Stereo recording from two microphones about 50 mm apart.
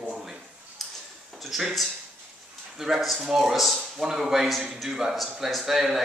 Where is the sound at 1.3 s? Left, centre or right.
Centre.